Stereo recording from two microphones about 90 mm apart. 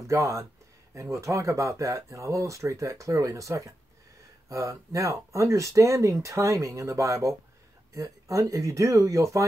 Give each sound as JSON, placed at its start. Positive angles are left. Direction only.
{"t": 0.0, "sound": "speech", "side_deg": -35}